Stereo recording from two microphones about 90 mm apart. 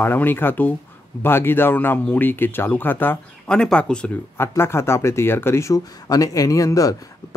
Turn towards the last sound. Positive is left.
turn(degrees=40)  # may be behind; listen again after turning